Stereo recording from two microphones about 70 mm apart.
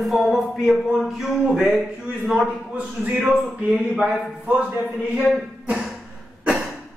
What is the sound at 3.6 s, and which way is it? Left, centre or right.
Speech, centre.